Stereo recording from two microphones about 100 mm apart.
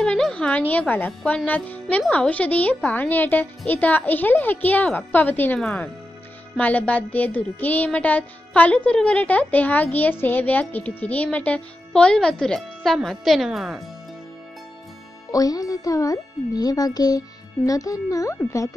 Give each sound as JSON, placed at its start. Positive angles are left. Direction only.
{"t": 0.0, "sound": "a woman's voice", "side_deg": 10}
{"t": 15.3, "sound": "a child's voice", "side_deg": 40}